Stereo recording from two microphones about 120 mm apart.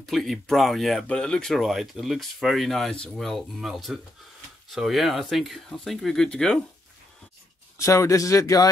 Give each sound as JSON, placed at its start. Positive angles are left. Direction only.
{"t": 0.0, "sound": "speech", "side_deg": 0}
{"t": 7.7, "sound": "speech", "side_deg": 25}